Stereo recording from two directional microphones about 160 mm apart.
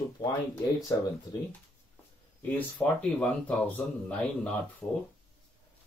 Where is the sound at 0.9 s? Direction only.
25° left (ahead or behind).